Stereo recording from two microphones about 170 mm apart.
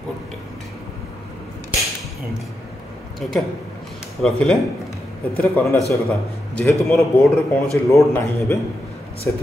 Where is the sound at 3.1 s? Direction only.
Centre (ahead or behind).